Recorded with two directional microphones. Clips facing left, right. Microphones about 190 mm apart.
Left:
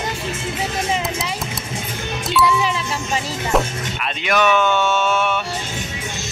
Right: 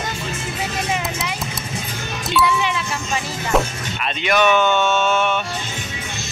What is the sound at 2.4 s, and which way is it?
Music, 35° left (ahead or behind).